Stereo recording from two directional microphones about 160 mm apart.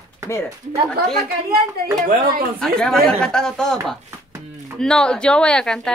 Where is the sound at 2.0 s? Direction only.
60° right (ahead or behind).